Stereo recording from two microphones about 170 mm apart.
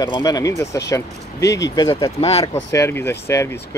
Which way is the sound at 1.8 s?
20° left (ahead or behind).